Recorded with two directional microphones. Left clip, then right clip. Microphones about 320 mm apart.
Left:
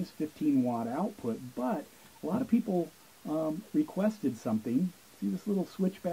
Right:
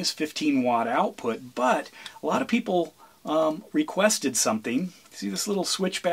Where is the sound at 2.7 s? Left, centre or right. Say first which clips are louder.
Right 8 dB; right.